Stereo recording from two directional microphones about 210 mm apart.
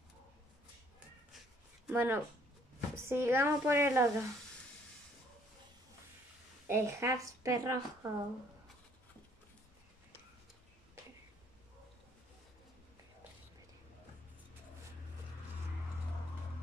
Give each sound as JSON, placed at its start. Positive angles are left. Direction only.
{"t": 1.9, "sound": "a woman's voice", "side_deg": -10}
{"t": 6.7, "sound": "a woman's voice", "side_deg": -15}